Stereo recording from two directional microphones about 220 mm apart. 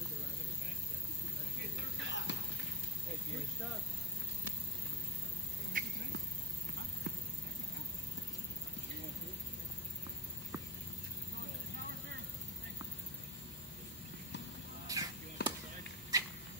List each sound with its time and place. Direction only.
2.0 s music: 55° left (ahead or behind)
5.7 s cat: 40° right (ahead or behind)
14.9 s basketball bounce: 15° right (ahead or behind)
15.4 s basketball bounce: 45° left (ahead or behind)
16.1 s rodents: 15° right (ahead or behind)